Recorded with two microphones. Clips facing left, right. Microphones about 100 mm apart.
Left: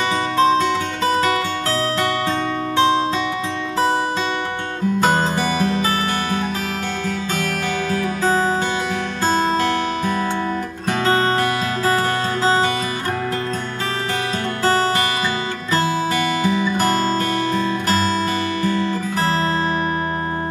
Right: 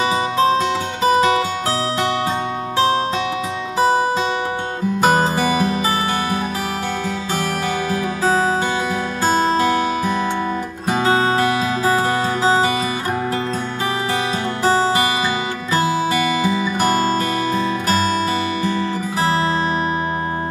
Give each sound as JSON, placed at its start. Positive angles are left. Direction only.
{"t": 0.4, "sound": "music", "side_deg": -15}
{"t": 5.0, "sound": "music", "side_deg": -15}
{"t": 7.9, "sound": "music", "side_deg": -10}
{"t": 14.6, "sound": "music", "side_deg": -15}